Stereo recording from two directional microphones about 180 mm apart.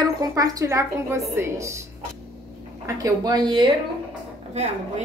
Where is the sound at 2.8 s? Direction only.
20° right (ahead or behind).